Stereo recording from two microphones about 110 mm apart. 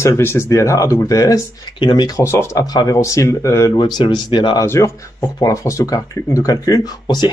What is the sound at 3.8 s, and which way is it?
Speech, 40° left (ahead or behind).